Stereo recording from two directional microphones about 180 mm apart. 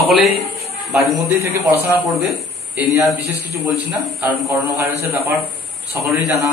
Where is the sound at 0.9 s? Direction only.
15° right (ahead or behind).